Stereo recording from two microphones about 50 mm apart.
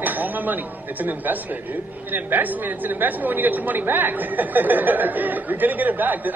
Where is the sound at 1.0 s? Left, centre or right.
Right.